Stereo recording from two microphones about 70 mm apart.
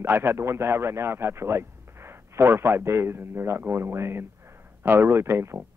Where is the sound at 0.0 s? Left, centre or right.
Right.